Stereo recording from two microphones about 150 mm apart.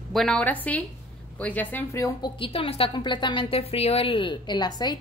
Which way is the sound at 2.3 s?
35° left (ahead or behind).